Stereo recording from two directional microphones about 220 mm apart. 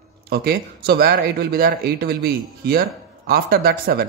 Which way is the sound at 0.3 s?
45° right (ahead or behind).